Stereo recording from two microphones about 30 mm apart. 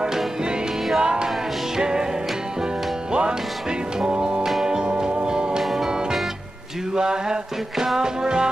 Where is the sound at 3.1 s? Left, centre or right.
Right.